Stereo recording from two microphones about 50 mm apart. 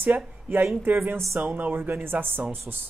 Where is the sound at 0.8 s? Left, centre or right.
Right.